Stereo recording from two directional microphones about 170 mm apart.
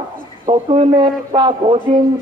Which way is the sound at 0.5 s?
30° right (ahead or behind).